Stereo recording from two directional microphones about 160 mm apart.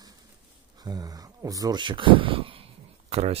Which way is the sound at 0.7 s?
25° right (ahead or behind).